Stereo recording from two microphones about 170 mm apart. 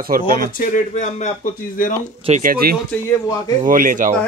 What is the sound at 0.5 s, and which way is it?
Speech, 55° left (ahead or behind).